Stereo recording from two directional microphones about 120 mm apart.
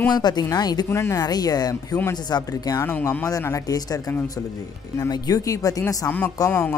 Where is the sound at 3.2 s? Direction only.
30° left (ahead or behind).